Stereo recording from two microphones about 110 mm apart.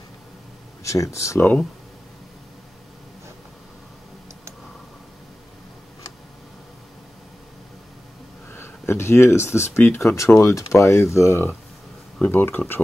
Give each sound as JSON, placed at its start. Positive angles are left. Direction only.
{"t": 0.8, "sound": "speech", "side_deg": 30}
{"t": 1.4, "sound": "speech", "side_deg": 15}
{"t": 8.5, "sound": "speech", "side_deg": 20}